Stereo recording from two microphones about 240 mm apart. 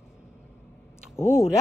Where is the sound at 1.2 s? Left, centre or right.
Centre.